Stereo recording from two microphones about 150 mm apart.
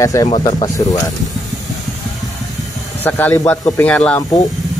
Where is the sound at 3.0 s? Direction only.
15° left (ahead or behind).